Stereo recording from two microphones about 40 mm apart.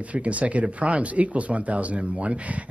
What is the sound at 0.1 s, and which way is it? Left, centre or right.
Speech, right.